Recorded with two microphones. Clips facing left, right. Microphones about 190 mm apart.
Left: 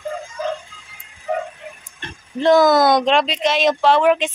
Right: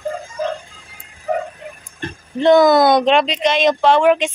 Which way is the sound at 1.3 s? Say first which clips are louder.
Right 2 dB; 40° right (ahead or behind).